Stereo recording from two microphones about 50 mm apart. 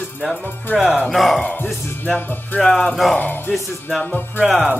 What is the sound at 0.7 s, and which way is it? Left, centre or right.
Speech, centre.